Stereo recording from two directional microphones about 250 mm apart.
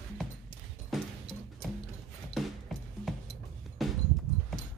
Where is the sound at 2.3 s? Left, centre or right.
Centre.